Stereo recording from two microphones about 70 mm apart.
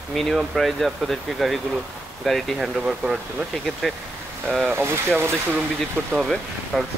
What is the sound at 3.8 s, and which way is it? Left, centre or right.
Speech, centre.